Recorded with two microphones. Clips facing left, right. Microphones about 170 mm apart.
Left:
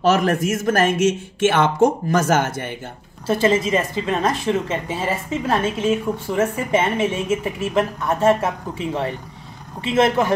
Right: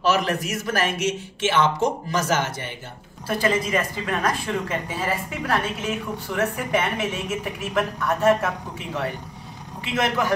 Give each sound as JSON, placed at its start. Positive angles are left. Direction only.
{"t": 0.0, "sound": "speech", "side_deg": 50}
{"t": 3.3, "sound": "a woman's voice", "side_deg": 25}